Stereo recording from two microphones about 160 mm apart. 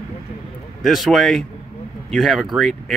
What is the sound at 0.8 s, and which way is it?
Speech, centre (ahead or behind).